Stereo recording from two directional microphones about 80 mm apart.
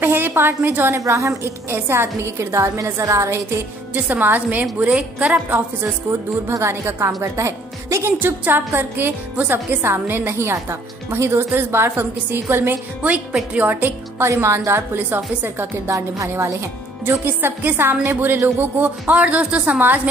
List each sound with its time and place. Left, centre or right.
0.0 s a woman's voice: right
0.9 s a woman's voice: right
3.9 s a woman's voice: right
4.8 s a woman's voice: centre
6.5 s a woman's voice: right
8.2 s a woman's voice: right
13.1 s a woman's voice: centre
15.9 s a woman's voice: right
17.0 s a woman's voice: right